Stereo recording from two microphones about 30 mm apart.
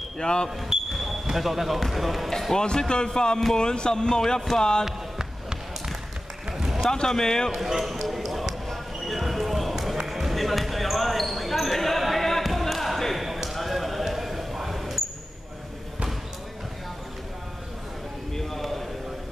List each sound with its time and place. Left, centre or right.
0.2 s speech: left
0.7 s speech: right
1.3 s speech: centre
2.5 s speech: left
6.9 s speech: centre
7.5 s speech: centre
9.0 s basketball bounce: centre
10.0 s music: centre
10.3 s basketball bounce: centre
18.3 s a sound: centre